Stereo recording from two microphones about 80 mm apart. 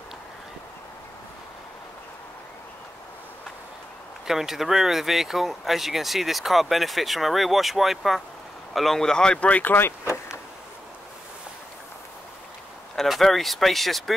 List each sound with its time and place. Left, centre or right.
4.3 s speech: centre; by 10.2 s left
12.9 s speech: centre